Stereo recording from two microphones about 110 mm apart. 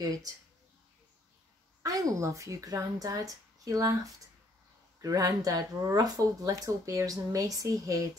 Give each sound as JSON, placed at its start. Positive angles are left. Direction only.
{"t": 0.0, "sound": "speech", "side_deg": -35}
{"t": 1.8, "sound": "speech", "side_deg": -30}